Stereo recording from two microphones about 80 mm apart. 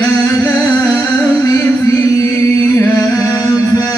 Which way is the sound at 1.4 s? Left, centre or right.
Left.